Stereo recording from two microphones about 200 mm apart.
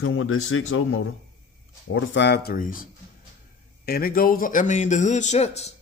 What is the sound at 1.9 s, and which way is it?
Speech, 60° left (ahead or behind).